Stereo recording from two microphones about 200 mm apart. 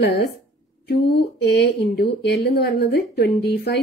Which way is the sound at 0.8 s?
55° left (ahead or behind).